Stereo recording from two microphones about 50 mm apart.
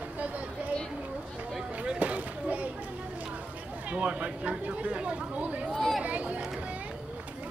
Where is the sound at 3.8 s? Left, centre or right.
Right.